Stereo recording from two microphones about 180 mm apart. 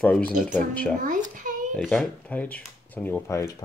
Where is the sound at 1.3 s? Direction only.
45° right (ahead or behind).